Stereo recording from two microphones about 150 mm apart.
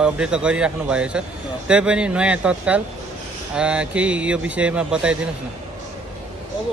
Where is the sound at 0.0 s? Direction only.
5° right (ahead or behind).